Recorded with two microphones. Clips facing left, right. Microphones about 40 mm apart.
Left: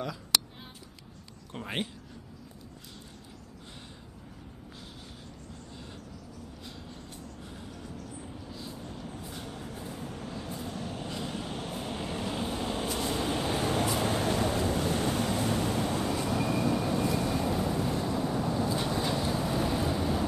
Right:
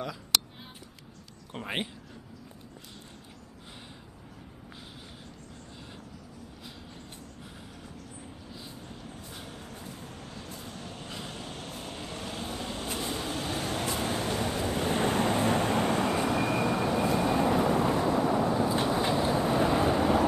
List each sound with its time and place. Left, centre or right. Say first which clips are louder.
1.5 s speech: right 1 dB; centre
8.5 s vehicle: left 2 dB; centre
14.8 s vehicle: right 2 dB; right